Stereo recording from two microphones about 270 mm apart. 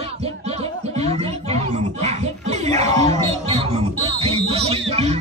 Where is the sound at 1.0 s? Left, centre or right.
Right.